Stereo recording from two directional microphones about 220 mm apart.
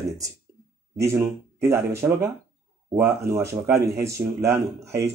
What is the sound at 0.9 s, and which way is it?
A man's voice, 10° right (ahead or behind).